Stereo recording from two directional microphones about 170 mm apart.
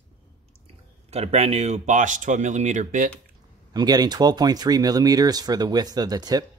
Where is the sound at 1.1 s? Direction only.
40° right (ahead or behind).